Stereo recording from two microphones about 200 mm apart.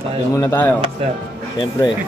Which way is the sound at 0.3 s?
15° left (ahead or behind).